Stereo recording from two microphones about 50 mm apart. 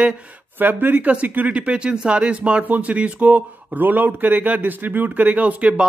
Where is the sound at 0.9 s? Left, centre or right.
Right.